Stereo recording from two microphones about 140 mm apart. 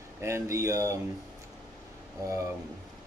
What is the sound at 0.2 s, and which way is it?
Speech, 20° right (ahead or behind).